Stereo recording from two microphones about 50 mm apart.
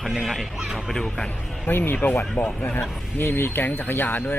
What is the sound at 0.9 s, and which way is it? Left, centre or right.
Speech, centre.